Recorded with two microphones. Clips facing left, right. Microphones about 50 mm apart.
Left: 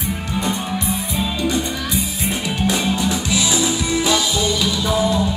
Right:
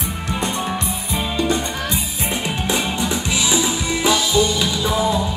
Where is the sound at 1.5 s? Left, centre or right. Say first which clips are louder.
Even; right.